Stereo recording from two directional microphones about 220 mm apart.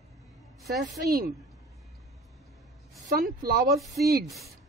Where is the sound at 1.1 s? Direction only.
40° right (ahead or behind).